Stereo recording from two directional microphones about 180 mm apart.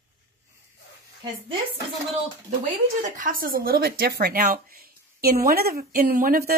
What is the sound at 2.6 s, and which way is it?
Speech, 45° right (ahead or behind).